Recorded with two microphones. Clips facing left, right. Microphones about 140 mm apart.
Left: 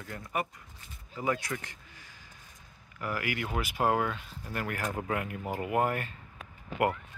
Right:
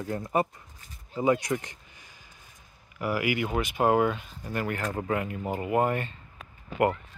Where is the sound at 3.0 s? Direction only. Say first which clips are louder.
Right 6 dB; 10° right (ahead or behind).